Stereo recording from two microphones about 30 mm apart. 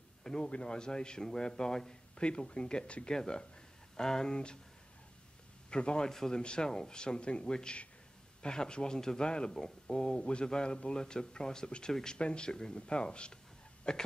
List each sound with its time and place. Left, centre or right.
0.4 s speech: left
2.1 s speech: left
5.7 s speech: left
6.0 s speech: centre
6.4 s speech: left